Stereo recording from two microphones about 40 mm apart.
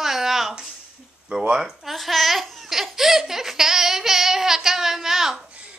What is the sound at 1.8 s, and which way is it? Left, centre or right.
Laughter, centre.